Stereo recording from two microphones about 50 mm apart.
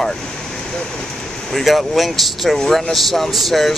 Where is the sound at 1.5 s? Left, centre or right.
Centre.